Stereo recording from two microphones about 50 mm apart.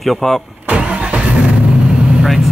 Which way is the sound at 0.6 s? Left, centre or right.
Right.